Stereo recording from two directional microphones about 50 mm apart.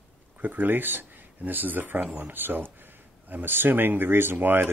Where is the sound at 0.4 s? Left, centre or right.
Right.